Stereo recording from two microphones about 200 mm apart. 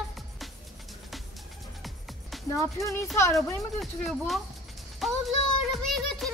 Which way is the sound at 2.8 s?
15° left (ahead or behind).